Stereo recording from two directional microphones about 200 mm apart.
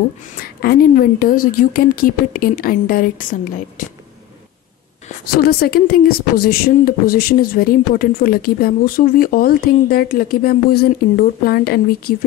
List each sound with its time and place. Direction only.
0.4 s speech: 50° left (ahead or behind)
5.2 s speech: 50° left (ahead or behind)